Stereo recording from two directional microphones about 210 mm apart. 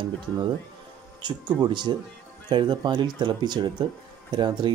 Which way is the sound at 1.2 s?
20° right (ahead or behind).